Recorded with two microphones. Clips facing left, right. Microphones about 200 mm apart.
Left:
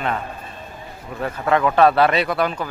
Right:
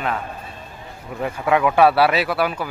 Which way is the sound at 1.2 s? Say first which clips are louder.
Even; 10° right (ahead or behind).